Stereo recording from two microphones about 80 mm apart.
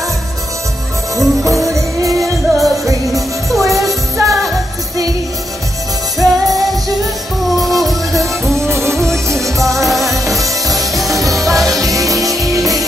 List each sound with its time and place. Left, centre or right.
1.1 s music: centre
1.5 s music: right
2.5 s music: centre
4.2 s music: right
6.1 s music: centre
9.8 s music: centre
12.4 s music: right